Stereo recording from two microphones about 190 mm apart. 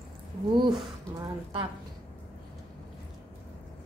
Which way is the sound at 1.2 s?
25° right (ahead or behind).